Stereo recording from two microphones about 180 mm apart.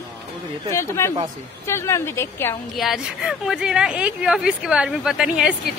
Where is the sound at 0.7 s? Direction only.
15° left (ahead or behind).